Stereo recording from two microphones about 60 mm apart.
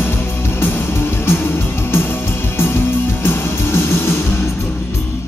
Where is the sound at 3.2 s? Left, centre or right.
Left.